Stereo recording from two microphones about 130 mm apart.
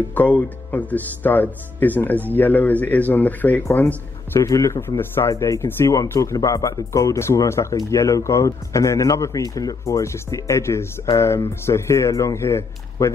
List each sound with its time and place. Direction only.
0.1 s speech: 10° left (ahead or behind)